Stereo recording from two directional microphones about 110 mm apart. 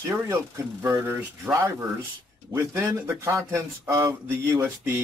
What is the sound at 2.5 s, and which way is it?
Speech, 25° right (ahead or behind).